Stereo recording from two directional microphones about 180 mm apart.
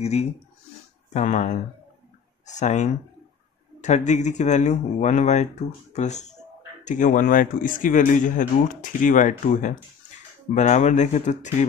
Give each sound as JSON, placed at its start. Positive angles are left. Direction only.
{"t": 0.0, "sound": "speech", "side_deg": 35}